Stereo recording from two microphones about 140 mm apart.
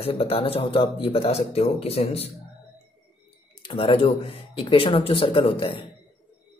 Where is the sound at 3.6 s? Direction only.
40° left (ahead or behind).